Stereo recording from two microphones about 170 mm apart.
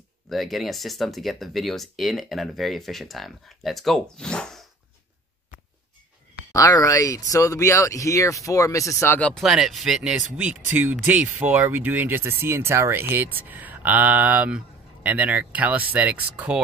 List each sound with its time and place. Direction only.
0.3 s speech: centre (ahead or behind)
6.5 s speech: 20° left (ahead or behind)
9.4 s speech: centre (ahead or behind)